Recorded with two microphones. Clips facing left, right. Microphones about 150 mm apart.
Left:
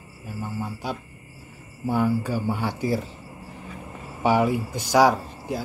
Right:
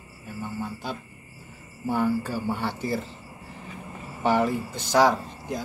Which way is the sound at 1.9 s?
10° left (ahead or behind).